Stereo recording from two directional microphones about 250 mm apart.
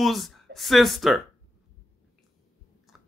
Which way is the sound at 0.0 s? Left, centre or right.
Centre.